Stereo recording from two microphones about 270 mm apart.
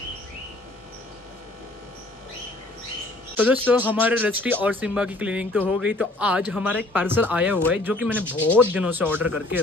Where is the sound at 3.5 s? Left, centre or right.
Centre.